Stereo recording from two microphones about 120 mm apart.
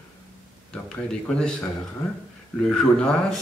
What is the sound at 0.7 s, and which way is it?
Speech, 10° left (ahead or behind).